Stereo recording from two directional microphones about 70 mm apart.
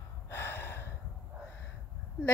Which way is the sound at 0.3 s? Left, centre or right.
Left.